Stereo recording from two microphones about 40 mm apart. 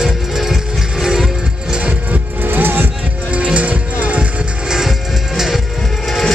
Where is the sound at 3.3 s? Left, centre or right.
Right.